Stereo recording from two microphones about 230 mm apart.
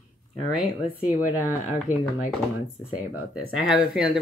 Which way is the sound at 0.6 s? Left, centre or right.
Centre.